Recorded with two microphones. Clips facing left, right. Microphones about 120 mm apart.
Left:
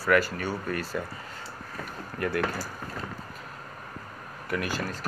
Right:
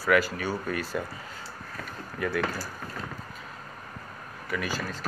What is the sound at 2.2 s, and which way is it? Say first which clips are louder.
Speech: left 1 dB; 5° left (ahead or behind).